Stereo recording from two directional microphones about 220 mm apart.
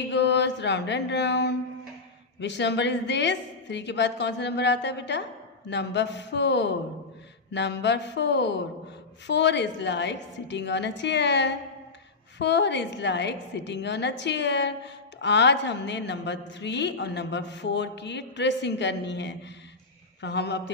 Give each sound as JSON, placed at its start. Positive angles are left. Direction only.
{"t": 0.0, "sound": "a woman's voice", "side_deg": 55}